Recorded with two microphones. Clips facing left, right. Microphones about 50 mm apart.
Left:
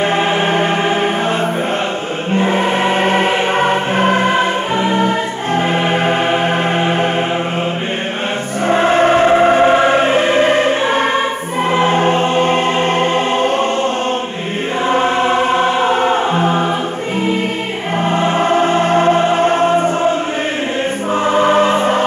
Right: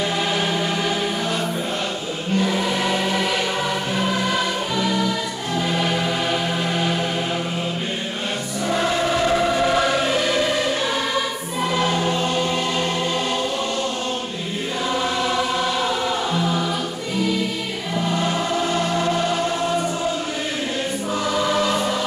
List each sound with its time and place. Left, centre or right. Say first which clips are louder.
0.0 s music: left 7 dB; left
2.3 s choir: left 7 dB; left
5.6 s music: left 6 dB; left
8.6 s choir: left 9 dB; left
11.7 s music: left 9 dB; left
14.9 s music: left 9 dB; left
18.1 s choir: left 10 dB; left
21.3 s choir: left 9 dB; left